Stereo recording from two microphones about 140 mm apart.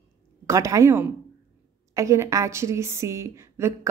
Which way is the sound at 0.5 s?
20° right (ahead or behind).